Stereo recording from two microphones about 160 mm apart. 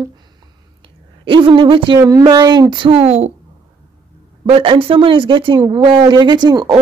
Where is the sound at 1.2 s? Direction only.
35° right (ahead or behind).